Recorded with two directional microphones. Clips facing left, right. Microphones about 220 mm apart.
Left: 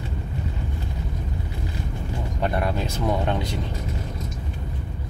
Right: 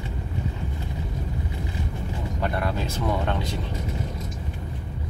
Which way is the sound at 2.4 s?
20° left (ahead or behind).